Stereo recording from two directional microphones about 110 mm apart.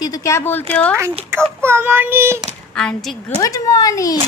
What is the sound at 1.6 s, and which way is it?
Child singing, 20° right (ahead or behind).